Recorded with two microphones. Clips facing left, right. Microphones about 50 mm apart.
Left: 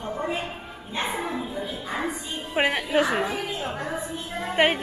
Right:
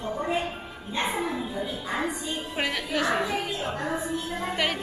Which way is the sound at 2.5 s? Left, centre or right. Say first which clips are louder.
Left 7 dB; left.